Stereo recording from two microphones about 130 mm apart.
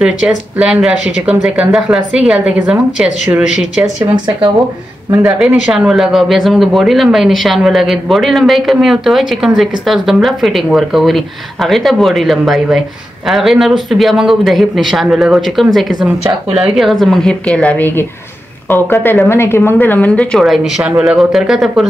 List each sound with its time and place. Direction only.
0.6 s a woman's voice: 5° right (ahead or behind)
5.4 s a man's voice: 5° right (ahead or behind)